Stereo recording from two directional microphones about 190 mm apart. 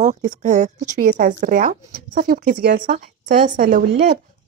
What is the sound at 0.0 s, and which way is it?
A woman's voice, 40° right (ahead or behind).